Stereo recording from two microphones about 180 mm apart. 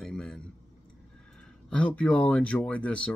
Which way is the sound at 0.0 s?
Centre (ahead or behind).